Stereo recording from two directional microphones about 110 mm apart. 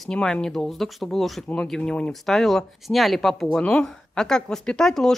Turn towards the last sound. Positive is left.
turn(degrees=5)  # may be behind; listen again after turning